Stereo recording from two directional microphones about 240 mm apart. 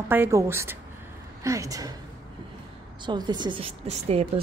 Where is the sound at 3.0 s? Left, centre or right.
Centre.